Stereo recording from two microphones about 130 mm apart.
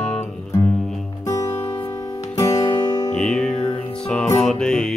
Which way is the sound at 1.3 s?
20° left (ahead or behind).